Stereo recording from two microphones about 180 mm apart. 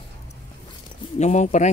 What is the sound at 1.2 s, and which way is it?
Speech, 40° left (ahead or behind).